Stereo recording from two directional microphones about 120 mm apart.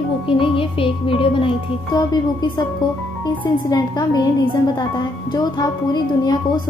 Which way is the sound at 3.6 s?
35° left (ahead or behind).